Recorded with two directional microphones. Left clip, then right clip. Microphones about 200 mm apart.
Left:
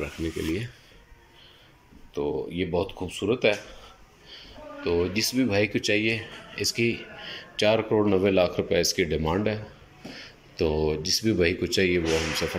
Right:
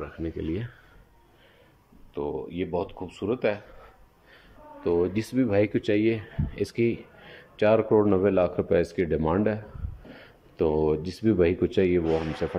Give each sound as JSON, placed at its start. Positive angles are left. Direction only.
{"t": 0.0, "sound": "speech", "side_deg": 0}
{"t": 2.1, "sound": "speech", "side_deg": 0}
{"t": 4.8, "sound": "speech", "side_deg": -15}
{"t": 10.1, "sound": "a sound", "side_deg": -5}
{"t": 11.2, "sound": "speech", "side_deg": -10}